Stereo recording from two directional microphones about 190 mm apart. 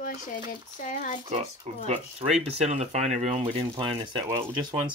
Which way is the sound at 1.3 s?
35° right (ahead or behind).